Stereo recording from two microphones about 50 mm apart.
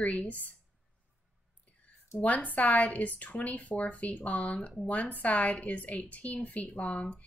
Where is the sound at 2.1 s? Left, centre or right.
Left.